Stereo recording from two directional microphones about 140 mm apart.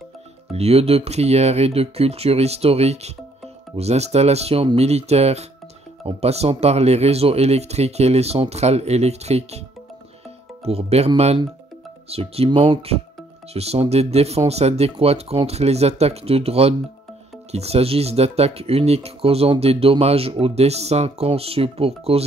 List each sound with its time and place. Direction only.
0.5 s speech: 45° right (ahead or behind)
10.6 s speech: 45° right (ahead or behind)
13.5 s speech: 45° right (ahead or behind)